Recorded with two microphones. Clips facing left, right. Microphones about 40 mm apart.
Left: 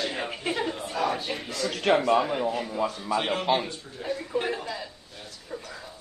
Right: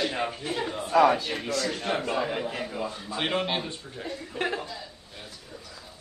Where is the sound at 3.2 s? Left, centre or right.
Right.